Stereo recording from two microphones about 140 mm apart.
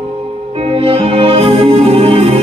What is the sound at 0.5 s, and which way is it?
Music, 45° right (ahead or behind).